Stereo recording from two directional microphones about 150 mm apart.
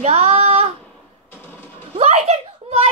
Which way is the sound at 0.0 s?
45° right (ahead or behind).